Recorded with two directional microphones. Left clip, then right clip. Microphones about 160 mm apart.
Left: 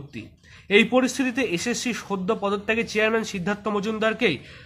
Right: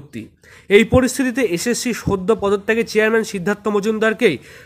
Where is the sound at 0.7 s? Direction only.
40° right (ahead or behind).